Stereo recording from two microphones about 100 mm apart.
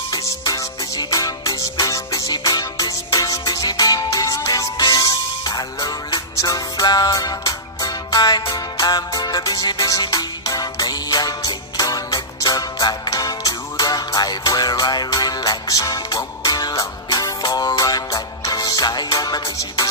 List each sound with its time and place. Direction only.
0.1 s music: 35° left (ahead or behind)